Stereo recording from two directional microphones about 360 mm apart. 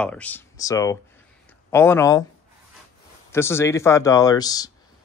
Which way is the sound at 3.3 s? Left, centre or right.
Centre.